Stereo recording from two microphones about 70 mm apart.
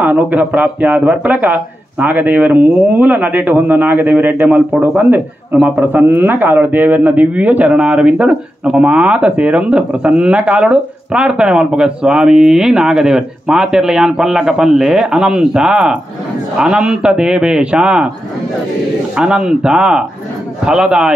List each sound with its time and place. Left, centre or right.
0.0 s speech: right
19.1 s speech: centre